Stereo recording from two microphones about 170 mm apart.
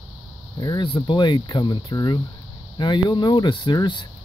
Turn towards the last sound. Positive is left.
turn(degrees=25)  # may be behind; listen again after turning